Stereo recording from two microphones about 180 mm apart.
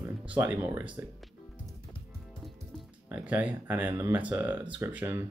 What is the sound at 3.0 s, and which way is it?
Speech, 10° right (ahead or behind).